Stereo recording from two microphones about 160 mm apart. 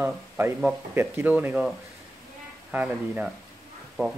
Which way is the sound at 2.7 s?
10° right (ahead or behind).